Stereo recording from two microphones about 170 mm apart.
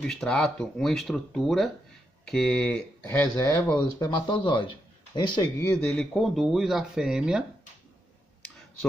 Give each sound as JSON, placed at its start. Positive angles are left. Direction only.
{"t": 0.0, "sound": "speech", "side_deg": 5}
{"t": 3.7, "sound": "speech", "side_deg": 25}
{"t": 5.9, "sound": "speech", "side_deg": 5}